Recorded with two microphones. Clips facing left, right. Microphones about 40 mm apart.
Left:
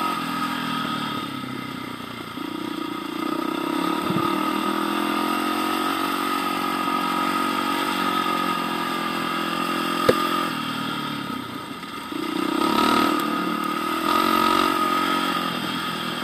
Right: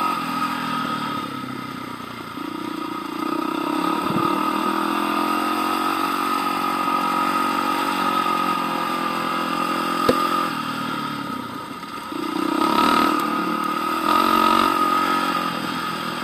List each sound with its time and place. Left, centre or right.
4.4 s vehicle: right
5.1 s vehicle: right
6.4 s vehicle: centre
7.9 s vehicle: left
8.5 s vehicle: centre
8.9 s vehicle: centre
9.8 s motorcycle: centre
12.5 s vehicle: centre
14.1 s a sound: centre
14.8 s a sound: left